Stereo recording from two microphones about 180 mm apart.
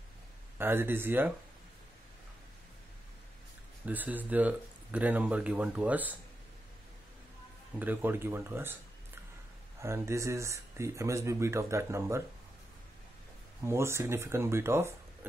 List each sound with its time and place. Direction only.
0.6 s speech: 10° right (ahead or behind)
3.8 s speech: 10° right (ahead or behind)
7.8 s speech: 10° right (ahead or behind)
9.8 s speech: 15° right (ahead or behind)
13.7 s speech: 15° right (ahead or behind)